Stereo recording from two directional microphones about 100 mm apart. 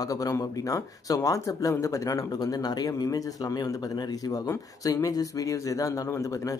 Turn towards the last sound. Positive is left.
turn(degrees=35)  # may be behind; listen again after turning